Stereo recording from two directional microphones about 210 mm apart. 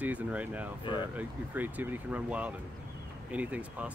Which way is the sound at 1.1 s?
5° right (ahead or behind).